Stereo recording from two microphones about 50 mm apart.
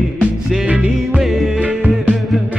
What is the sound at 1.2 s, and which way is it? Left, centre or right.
Music, centre.